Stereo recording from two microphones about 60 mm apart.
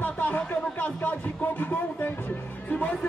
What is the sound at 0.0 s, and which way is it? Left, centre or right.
Speech, left.